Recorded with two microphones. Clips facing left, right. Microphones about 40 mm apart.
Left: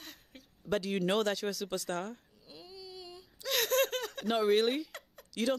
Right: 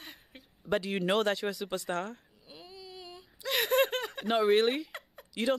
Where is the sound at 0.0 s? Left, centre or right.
Centre.